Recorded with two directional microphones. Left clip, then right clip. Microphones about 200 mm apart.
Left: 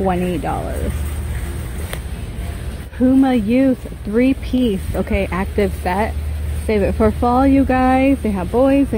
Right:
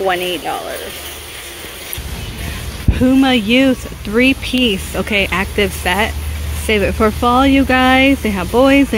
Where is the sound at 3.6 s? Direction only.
5° right (ahead or behind).